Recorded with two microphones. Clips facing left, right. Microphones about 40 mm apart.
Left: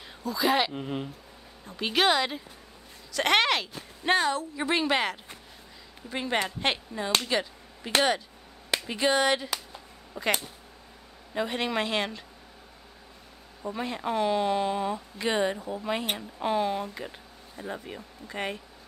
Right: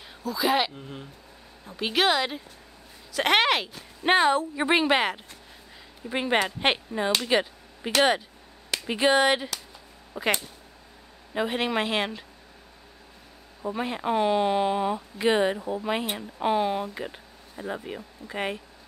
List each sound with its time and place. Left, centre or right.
0.2 s speech: centre
0.7 s speech: left
1.7 s speech: centre
4.0 s speech: right
7.2 s a sound: right
8.8 s speech: centre
11.3 s speech: centre
13.6 s speech: centre